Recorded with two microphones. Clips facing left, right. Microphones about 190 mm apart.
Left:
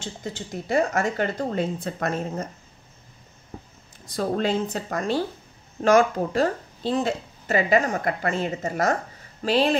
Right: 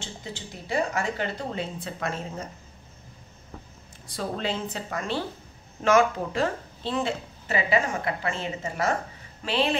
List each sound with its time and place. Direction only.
0.0 s speech: 45° left (ahead or behind)
4.1 s speech: 45° left (ahead or behind)